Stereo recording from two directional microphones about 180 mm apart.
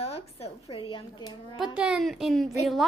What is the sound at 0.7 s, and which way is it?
Speech, 30° left (ahead or behind).